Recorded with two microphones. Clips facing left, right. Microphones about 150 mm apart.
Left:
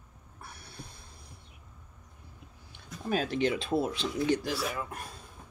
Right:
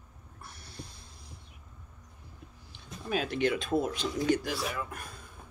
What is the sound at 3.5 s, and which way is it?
Speech, 30° left (ahead or behind).